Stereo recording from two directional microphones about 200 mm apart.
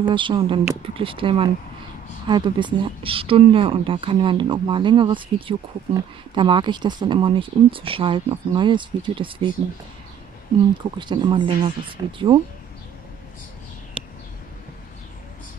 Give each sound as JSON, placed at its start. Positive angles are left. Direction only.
{"t": 0.0, "sound": "speech", "side_deg": -25}
{"t": 11.0, "sound": "speech", "side_deg": -25}
{"t": 14.0, "sound": "a sound", "side_deg": -5}